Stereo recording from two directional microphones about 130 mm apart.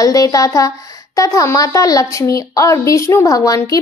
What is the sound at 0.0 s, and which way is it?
A child's voice, 25° left (ahead or behind).